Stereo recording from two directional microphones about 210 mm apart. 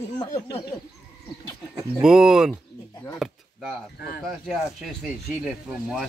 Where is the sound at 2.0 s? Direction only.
5° right (ahead or behind).